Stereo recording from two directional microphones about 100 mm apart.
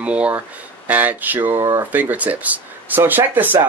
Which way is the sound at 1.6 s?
35° right (ahead or behind).